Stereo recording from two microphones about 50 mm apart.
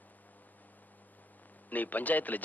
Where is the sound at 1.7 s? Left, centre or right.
Left.